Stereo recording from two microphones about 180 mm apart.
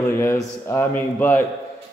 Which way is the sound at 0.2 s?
15° left (ahead or behind).